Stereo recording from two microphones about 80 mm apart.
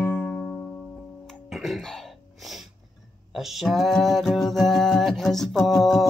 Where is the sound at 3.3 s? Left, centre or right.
Centre.